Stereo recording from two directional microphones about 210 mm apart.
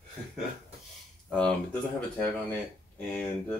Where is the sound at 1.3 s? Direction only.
5° left (ahead or behind).